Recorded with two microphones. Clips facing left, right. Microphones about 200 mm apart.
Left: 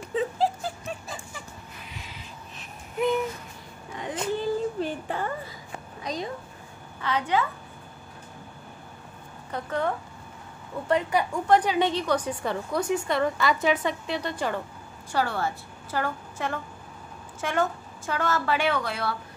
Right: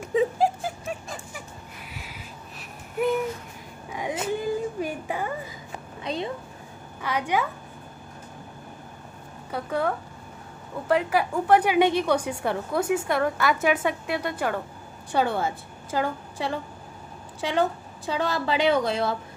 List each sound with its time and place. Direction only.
0.1 s a sound: 10° right (ahead or behind)
3.9 s whimper: 10° right (ahead or behind)
6.0 s a woman's voice: 25° right (ahead or behind)
7.0 s a woman's voice: 10° right (ahead or behind)
9.5 s a woman's voice: 10° right (ahead or behind)
15.1 s a woman's voice: 20° right (ahead or behind)